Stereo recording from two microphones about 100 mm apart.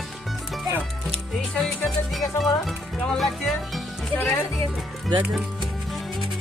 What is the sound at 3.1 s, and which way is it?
Music, centre (ahead or behind).